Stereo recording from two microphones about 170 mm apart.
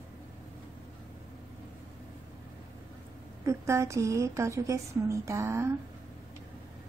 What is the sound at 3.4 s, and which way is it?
A woman's voice, 15° right (ahead or behind).